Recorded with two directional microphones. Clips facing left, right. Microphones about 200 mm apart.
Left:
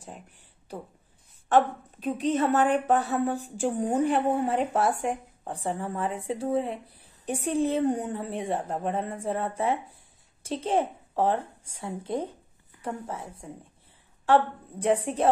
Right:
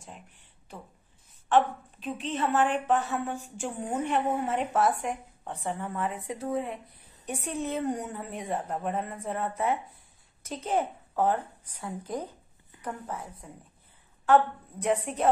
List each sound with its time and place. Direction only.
1.5 s a woman's voice: 40° left (ahead or behind)